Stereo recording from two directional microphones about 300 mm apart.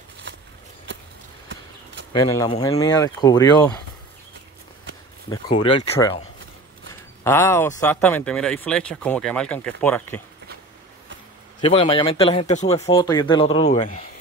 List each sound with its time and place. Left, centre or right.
2.1 s speech: centre
5.3 s speech: centre
7.2 s speech: centre
11.6 s speech: centre